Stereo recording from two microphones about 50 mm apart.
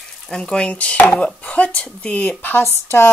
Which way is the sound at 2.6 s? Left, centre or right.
Left.